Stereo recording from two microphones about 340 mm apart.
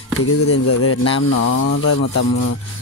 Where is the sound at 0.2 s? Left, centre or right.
Left.